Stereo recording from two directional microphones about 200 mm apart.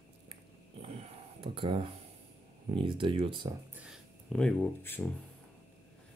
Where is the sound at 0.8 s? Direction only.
30° right (ahead or behind).